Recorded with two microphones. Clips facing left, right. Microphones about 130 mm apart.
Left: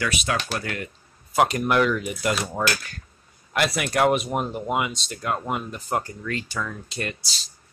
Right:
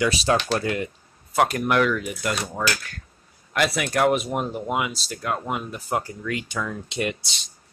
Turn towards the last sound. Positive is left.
turn(degrees=-20)  # may be behind; listen again after turning